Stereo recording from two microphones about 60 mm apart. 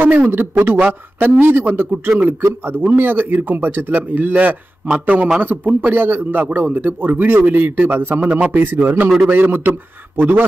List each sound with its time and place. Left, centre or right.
0.0 s a man's voice: right